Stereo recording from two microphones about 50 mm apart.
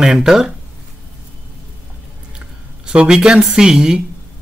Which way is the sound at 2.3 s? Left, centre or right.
Centre.